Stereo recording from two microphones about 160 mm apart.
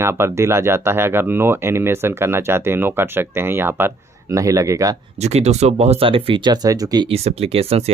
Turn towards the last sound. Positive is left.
turn(degrees=-40)  # may be behind; listen again after turning